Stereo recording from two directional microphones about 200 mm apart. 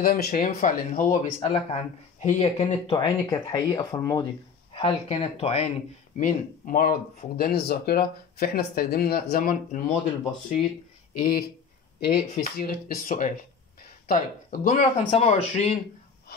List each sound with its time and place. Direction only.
0.0 s speech: 50° left (ahead or behind)
2.9 s speech: 20° left (ahead or behind)
4.7 s speech: 30° left (ahead or behind)
11.1 s speech: 45° left (ahead or behind)